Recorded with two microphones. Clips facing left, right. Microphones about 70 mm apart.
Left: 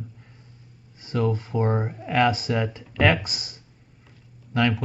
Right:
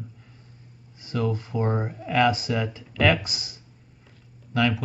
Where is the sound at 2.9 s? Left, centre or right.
Left.